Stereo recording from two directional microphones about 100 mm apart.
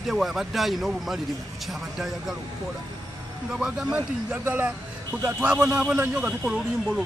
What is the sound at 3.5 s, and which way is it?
Speech, 5° right (ahead or behind).